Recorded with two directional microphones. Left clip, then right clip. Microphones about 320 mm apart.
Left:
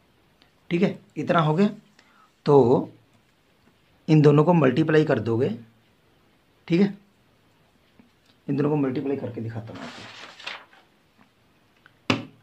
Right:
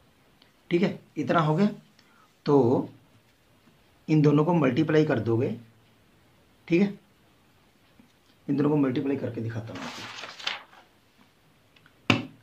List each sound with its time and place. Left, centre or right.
0.7 s speech: left
4.0 s speech: left
6.6 s speech: left
8.5 s speech: centre